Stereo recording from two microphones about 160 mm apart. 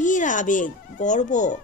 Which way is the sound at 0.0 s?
50° left (ahead or behind).